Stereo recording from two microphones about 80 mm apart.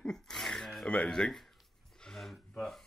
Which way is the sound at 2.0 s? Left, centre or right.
Centre.